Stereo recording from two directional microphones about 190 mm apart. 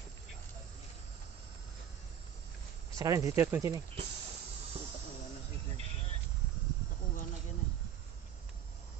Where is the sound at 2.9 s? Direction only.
15° right (ahead or behind).